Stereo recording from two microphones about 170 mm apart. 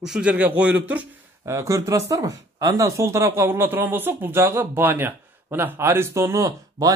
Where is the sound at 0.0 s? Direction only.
5° right (ahead or behind).